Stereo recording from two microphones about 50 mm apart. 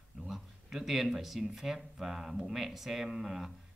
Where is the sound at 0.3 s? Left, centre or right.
Centre.